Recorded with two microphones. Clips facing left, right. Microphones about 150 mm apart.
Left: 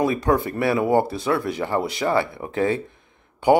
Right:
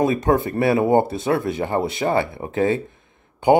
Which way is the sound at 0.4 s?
20° right (ahead or behind).